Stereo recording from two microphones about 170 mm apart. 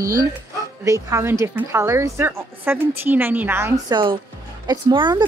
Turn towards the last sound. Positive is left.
turn(degrees=-30)  # may be behind; listen again after turning